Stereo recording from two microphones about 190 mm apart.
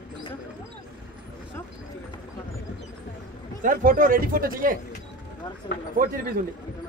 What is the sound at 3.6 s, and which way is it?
Speech, 45° right (ahead or behind).